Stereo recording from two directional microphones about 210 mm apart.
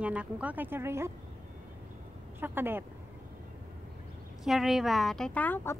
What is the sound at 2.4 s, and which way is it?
Speech, 10° right (ahead or behind).